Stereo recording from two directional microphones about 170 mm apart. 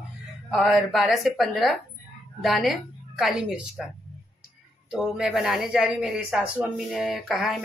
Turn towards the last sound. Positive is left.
turn(degrees=0)  # may be behind; listen again after turning